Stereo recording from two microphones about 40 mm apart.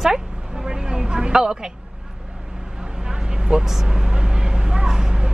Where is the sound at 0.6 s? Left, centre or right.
Centre.